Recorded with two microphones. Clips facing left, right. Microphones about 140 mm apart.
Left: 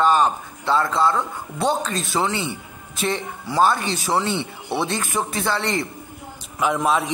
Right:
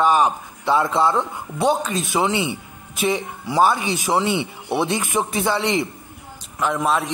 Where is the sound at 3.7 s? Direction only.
15° right (ahead or behind).